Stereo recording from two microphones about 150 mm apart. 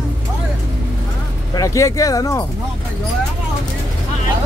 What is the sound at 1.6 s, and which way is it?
Speech, 20° left (ahead or behind).